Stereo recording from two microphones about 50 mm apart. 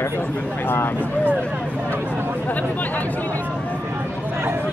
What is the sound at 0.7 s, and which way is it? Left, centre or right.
Speech, left.